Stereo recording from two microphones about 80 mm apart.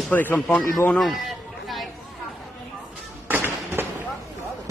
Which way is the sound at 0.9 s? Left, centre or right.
Centre.